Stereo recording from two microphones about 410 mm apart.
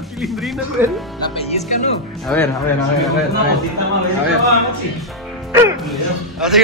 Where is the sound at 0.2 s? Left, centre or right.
Centre.